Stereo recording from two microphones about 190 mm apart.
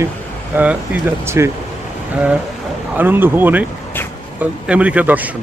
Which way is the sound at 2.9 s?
10° right (ahead or behind).